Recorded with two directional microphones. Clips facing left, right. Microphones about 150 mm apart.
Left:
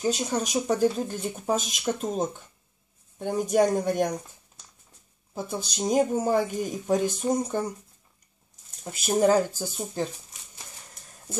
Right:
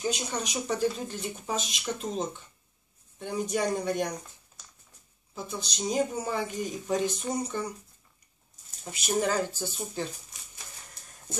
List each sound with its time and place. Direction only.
0.0 s speech: 40° left (ahead or behind)
5.3 s speech: 50° left (ahead or behind)
9.0 s speech: 45° left (ahead or behind)